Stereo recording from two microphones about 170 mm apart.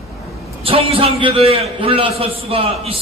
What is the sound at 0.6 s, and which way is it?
A man's voice, 35° right (ahead or behind).